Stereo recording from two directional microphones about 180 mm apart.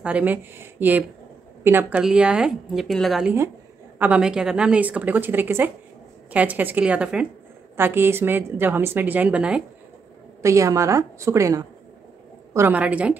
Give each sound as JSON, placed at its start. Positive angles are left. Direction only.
{"t": 0.0, "sound": "a woman's voice", "side_deg": -10}
{"t": 10.4, "sound": "a woman's voice", "side_deg": -15}